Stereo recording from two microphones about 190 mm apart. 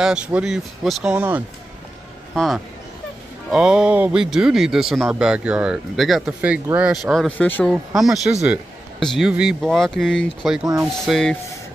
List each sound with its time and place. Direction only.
0.0 s speech: 5° right (ahead or behind)